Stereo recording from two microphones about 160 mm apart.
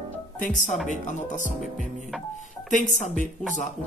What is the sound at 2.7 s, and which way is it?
Music, 50° left (ahead or behind).